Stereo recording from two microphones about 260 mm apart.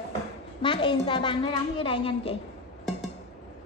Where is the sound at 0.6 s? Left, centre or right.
Centre.